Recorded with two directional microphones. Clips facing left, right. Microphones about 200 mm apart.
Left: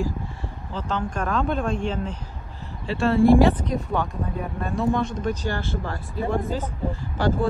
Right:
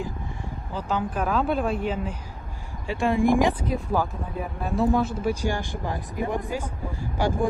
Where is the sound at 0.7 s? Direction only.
10° right (ahead or behind).